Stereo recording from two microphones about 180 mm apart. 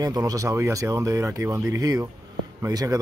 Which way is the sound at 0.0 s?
20° right (ahead or behind).